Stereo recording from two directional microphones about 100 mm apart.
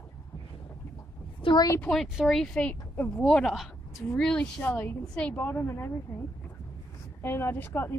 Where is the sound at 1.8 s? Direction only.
5° left (ahead or behind); by 5.9 s 25° left (ahead or behind).